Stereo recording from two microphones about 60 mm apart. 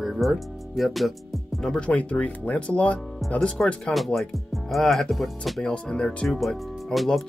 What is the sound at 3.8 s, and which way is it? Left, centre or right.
Speech, centre.